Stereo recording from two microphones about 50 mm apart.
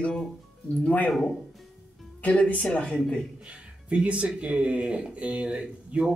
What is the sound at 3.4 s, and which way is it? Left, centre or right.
Speech, right.